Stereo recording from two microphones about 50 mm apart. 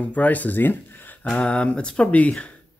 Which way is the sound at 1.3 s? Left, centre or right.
Left.